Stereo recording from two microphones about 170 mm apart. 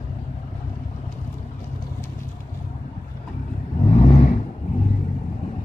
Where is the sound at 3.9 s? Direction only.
40° left (ahead or behind).